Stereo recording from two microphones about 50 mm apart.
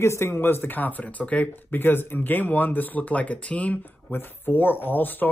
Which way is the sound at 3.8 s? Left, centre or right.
Left.